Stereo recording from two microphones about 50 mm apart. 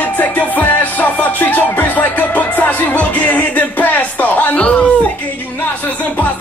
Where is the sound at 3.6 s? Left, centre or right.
Left.